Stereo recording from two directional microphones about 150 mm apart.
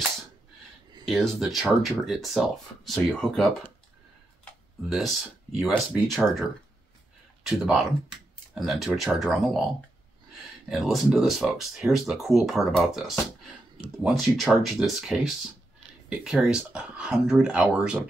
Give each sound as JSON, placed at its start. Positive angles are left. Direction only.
{"t": 1.0, "sound": "speech", "side_deg": 0}
{"t": 4.8, "sound": "speech", "side_deg": 0}
{"t": 10.7, "sound": "speech", "side_deg": -5}